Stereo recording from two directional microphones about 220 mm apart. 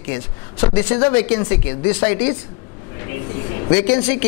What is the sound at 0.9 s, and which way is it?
Speech, 15° left (ahead or behind).